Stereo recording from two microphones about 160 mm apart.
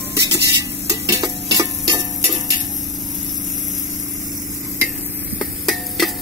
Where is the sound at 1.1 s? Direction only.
25° right (ahead or behind).